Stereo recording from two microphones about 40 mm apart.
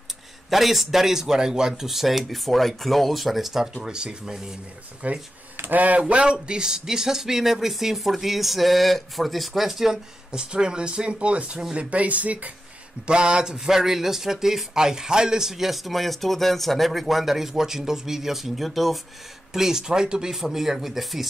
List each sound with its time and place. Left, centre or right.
0.5 s a man's voice: centre
5.0 s speech: right
6.2 s a man's voice: right
10.4 s speech: right
13.0 s a man's voice: right; by 18.9 s centre
19.5 s a man's voice: centre